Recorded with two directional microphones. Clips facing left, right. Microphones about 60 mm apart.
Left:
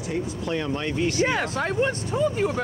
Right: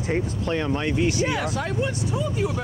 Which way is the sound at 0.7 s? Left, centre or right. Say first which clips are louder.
Right 3 dB; centre.